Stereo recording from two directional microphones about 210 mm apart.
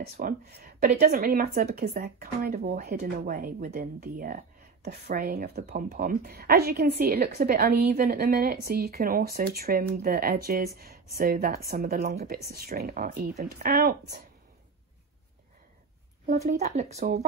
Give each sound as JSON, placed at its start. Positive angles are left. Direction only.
{"t": 0.0, "sound": "speech", "side_deg": -45}
{"t": 16.3, "sound": "speech", "side_deg": -35}